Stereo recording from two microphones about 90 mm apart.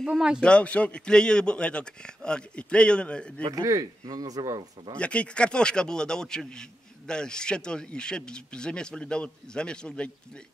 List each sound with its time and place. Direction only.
0.0 s speech: 10° right (ahead or behind)
0.4 s a man's voice: 10° left (ahead or behind)
3.5 s speech: 40° right (ahead or behind)
4.9 s a man's voice: 15° left (ahead or behind)